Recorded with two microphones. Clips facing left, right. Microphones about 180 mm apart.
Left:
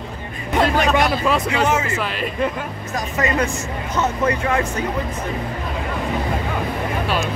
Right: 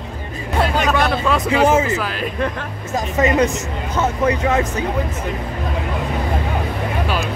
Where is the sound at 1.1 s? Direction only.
5° left (ahead or behind).